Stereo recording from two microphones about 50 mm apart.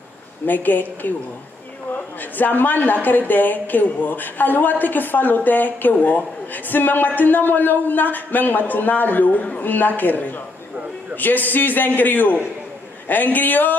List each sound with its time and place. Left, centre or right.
0.5 s speech: left
2.3 s speech: left